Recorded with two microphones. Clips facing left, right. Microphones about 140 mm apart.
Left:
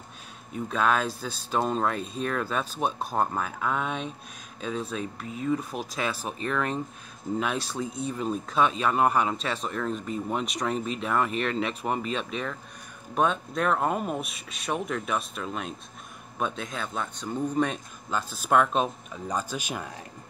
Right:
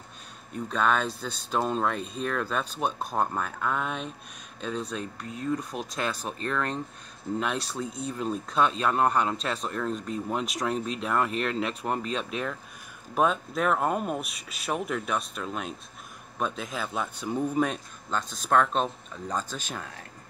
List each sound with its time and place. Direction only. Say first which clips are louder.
0.5 s speech: left 1 dB; 5° left (ahead or behind)
18.1 s speech: left 1 dB; 10° left (ahead or behind)